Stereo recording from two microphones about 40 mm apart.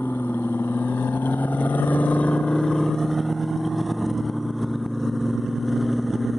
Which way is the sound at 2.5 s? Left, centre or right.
Centre.